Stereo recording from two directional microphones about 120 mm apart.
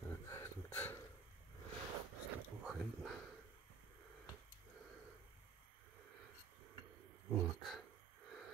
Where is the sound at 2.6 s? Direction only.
5° right (ahead or behind).